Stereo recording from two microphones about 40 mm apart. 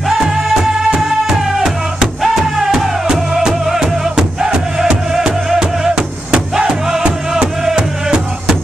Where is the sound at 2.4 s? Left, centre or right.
Centre.